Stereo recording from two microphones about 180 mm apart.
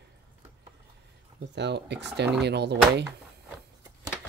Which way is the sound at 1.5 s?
75° right (ahead or behind).